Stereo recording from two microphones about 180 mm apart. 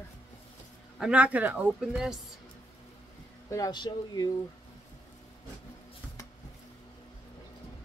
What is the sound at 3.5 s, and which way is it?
Speech, 20° left (ahead or behind).